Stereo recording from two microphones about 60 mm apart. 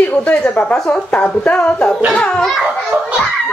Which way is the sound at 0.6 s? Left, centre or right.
Left.